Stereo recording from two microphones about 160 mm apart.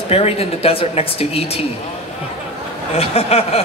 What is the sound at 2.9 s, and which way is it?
Speech, 40° left (ahead or behind).